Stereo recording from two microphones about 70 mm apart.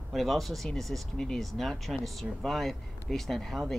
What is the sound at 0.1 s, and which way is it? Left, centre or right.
Speech, centre.